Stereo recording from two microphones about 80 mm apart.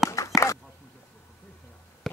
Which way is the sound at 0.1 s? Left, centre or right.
Left.